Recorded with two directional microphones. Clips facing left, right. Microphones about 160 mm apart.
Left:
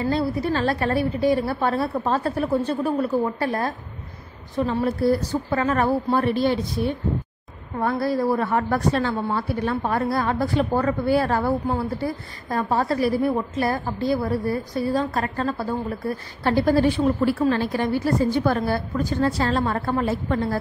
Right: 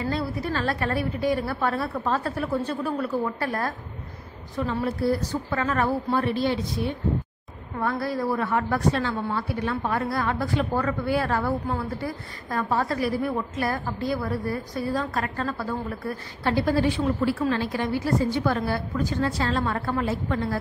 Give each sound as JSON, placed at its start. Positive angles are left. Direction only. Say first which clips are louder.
{"t": 0.0, "sound": "a woman's voice", "louder": "left 5 dB", "side_deg": 30}
{"t": 7.8, "sound": "a woman's voice", "louder": "left 4 dB", "side_deg": 35}
{"t": 16.4, "sound": "a woman's voice", "louder": "left 4 dB", "side_deg": 40}